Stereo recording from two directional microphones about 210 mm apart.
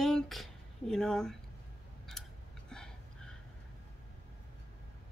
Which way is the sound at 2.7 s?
5° left (ahead or behind).